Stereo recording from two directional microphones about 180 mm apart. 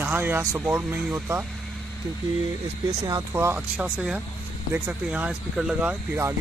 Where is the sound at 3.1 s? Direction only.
15° right (ahead or behind).